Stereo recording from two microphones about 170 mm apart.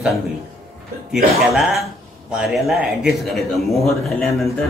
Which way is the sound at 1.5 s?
Centre (ahead or behind).